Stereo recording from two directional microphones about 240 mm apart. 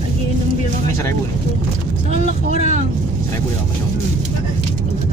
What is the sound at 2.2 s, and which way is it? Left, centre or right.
Vehicle, right.